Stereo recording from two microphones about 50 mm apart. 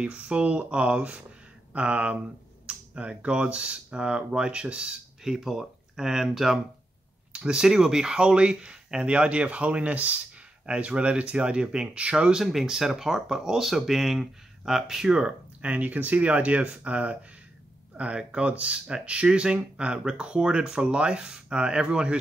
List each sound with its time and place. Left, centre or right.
0.0 s speech: right